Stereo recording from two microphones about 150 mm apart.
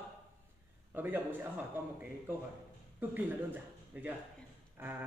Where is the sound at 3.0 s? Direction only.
10° right (ahead or behind).